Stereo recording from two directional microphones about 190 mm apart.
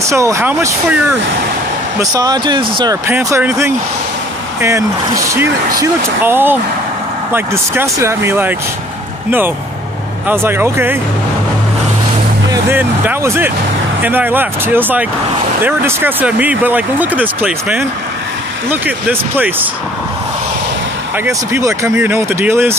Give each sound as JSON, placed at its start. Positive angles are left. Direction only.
{"t": 0.0, "sound": "speech", "side_deg": -15}
{"t": 2.0, "sound": "speech", "side_deg": -20}
{"t": 10.2, "sound": "speech", "side_deg": -10}
{"t": 12.4, "sound": "speech", "side_deg": -10}
{"t": 21.3, "sound": "speech", "side_deg": -15}